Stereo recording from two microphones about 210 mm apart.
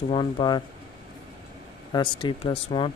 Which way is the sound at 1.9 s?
25° left (ahead or behind).